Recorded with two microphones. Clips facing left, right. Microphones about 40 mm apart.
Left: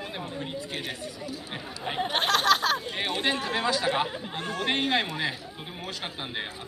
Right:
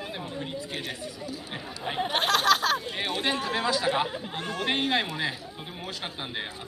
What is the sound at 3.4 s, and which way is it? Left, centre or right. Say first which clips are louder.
Speech: even; centre.